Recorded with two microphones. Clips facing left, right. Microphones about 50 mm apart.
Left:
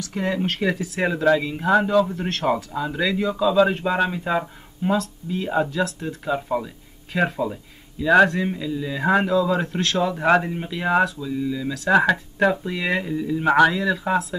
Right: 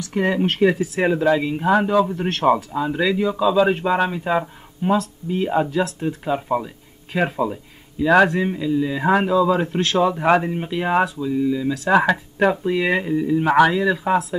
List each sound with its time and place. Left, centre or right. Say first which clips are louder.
0.1 s speech: right 5 dB; right
0.4 s speech: right 7 dB; right
0.7 s speech: right 4 dB; centre